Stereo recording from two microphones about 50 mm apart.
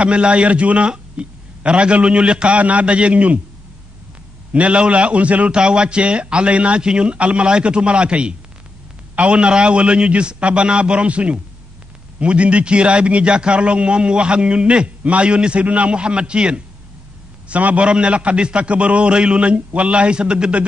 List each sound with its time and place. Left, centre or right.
0.0 s a man's voice: right
4.5 s a man's voice: right